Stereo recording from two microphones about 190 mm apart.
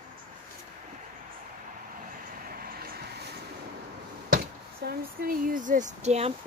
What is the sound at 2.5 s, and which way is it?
Vehicle, 50° right (ahead or behind).